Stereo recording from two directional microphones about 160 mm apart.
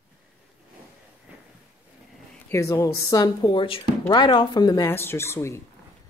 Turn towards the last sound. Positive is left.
turn(degrees=15)  # may be behind; listen again after turning